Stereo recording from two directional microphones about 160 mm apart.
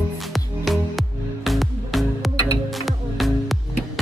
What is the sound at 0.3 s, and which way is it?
Music, centre (ahead or behind).